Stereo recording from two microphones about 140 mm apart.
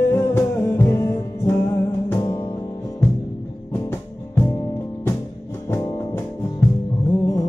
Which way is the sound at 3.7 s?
15° left (ahead or behind).